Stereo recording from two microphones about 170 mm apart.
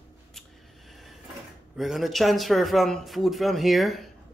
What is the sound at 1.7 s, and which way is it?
Speech, centre (ahead or behind).